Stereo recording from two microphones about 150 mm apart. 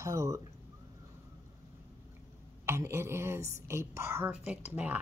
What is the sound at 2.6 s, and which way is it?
Speech, 15° right (ahead or behind).